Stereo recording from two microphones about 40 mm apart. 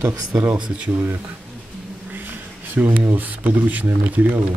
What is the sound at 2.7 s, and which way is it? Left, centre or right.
Speech, right.